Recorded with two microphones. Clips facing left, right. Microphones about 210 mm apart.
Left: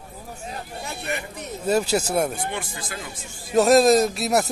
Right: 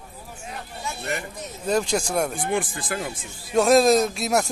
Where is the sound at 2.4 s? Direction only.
50° right (ahead or behind).